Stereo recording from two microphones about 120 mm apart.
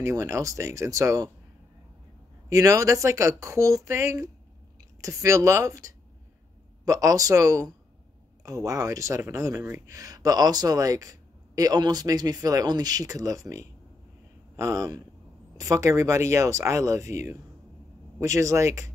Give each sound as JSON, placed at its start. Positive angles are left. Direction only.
{"t": 0.0, "sound": "speech", "side_deg": -25}
{"t": 2.5, "sound": "speech", "side_deg": -25}
{"t": 14.6, "sound": "speech", "side_deg": -25}
{"t": 18.2, "sound": "speech", "side_deg": -25}